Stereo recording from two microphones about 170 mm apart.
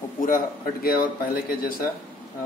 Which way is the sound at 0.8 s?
60° left (ahead or behind).